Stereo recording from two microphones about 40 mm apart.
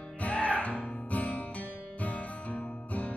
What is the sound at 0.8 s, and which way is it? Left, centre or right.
Music, left.